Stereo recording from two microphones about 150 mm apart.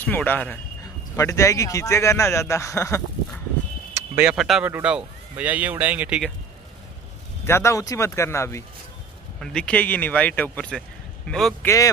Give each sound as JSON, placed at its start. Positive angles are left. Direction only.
{"t": 0.0, "sound": "speech", "side_deg": 10}
{"t": 1.1, "sound": "speech", "side_deg": 20}
{"t": 3.9, "sound": "a sound", "side_deg": -20}
{"t": 4.3, "sound": "speech", "side_deg": -5}
{"t": 7.4, "sound": "speech", "side_deg": 15}
{"t": 9.4, "sound": "speech", "side_deg": 5}
{"t": 11.6, "sound": "speech", "side_deg": 20}